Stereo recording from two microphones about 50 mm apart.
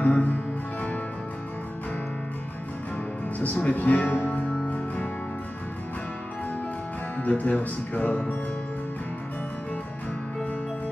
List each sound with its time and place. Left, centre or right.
0.0 s music: left
3.3 s speech: left
7.2 s speech: left